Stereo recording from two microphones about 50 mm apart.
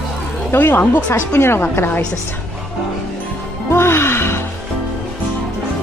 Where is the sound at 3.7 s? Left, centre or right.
Left.